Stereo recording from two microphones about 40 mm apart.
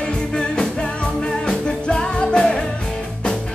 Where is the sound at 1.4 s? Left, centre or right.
Left.